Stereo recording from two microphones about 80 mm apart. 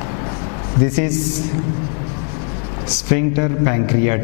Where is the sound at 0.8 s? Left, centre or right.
Centre.